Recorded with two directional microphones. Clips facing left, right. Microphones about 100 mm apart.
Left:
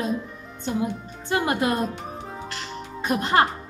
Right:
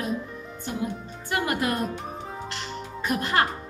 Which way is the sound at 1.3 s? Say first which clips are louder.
Left 3 dB; 25° left (ahead or behind).